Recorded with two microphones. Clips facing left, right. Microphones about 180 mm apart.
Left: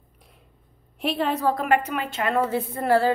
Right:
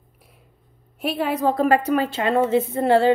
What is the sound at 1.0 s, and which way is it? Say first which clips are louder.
Speech: right 1 dB; 5° right (ahead or behind).